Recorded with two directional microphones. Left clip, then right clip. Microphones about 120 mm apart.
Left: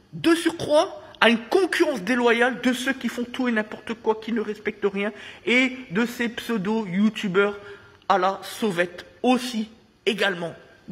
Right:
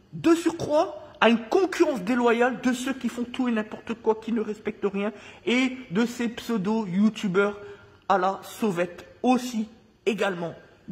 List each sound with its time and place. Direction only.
0.2 s a woman's voice: 10° right (ahead or behind)
1.3 s speech: 25° right (ahead or behind)
2.4 s speech: centre (ahead or behind)
8.6 s a woman's voice: centre (ahead or behind)
9.2 s a sound: 20° right (ahead or behind)